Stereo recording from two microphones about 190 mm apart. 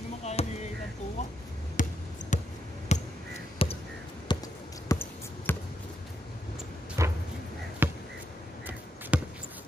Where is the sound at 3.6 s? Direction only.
30° left (ahead or behind).